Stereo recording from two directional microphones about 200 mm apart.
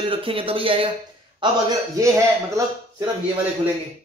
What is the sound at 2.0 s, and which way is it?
Speech, 15° right (ahead or behind).